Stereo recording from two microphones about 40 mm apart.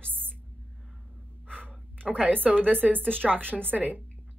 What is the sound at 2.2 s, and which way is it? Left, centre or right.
Speech, right.